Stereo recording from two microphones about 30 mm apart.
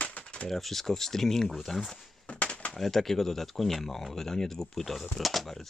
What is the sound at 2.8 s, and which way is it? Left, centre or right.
Speech, centre.